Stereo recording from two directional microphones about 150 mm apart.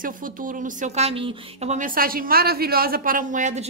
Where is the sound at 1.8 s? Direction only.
70° right (ahead or behind); by 3.7 s 55° right (ahead or behind).